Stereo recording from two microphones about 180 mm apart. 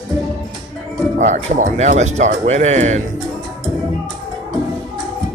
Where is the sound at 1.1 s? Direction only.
45° right (ahead or behind).